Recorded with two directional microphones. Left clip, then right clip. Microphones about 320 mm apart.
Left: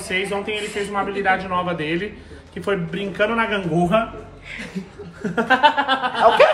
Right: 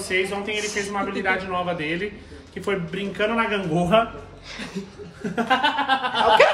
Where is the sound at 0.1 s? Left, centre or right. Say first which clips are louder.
Left 1 dB; centre.